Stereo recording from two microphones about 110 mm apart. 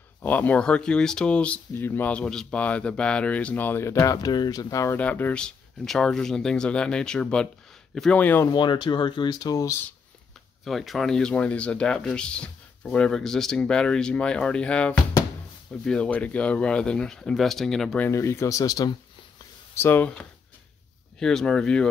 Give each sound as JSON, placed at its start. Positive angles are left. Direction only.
{"t": 0.2, "sound": "speech", "side_deg": 15}
{"t": 4.9, "sound": "speech", "side_deg": 15}
{"t": 8.2, "sound": "speech", "side_deg": 15}
{"t": 8.5, "sound": "speech", "side_deg": 40}
{"t": 10.6, "sound": "speech", "side_deg": 0}
{"t": 18.0, "sound": "speech", "side_deg": 25}
{"t": 19.7, "sound": "speech", "side_deg": 20}
{"t": 21.2, "sound": "speech", "side_deg": 5}